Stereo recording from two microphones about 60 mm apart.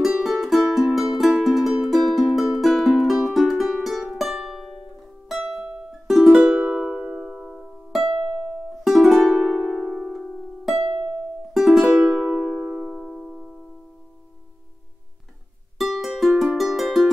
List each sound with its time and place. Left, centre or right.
0.0 s music: centre
5.6 s music: centre
9.2 s harp: centre
11.5 s music: centre
13.1 s music: centre
15.8 s music: centre